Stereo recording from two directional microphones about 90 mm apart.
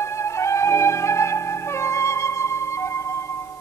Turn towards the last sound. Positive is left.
turn(degrees=30)  # may be behind; listen again after turning